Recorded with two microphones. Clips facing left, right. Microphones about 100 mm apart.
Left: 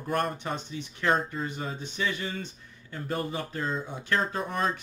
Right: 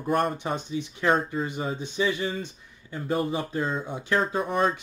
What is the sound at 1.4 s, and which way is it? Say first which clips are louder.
Speech: right 4 dB; 5° right (ahead or behind).